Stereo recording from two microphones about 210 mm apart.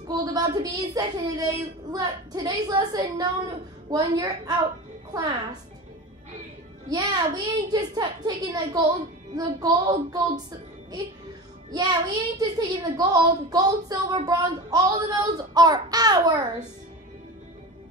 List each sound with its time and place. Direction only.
0.1 s a child's voice: 20° right (ahead or behind)
6.9 s a child's voice: 20° right (ahead or behind)
11.7 s a child's voice: 20° right (ahead or behind)